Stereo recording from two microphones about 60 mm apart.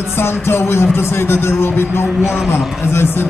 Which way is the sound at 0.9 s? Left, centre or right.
Left.